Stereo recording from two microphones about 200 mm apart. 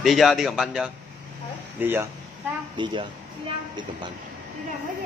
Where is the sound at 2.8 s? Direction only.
25° right (ahead or behind).